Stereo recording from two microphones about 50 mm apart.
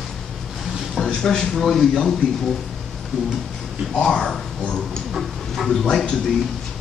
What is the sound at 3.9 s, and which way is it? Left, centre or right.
Speech, centre.